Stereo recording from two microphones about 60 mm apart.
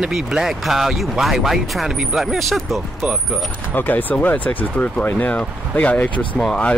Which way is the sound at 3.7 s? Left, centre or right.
Left.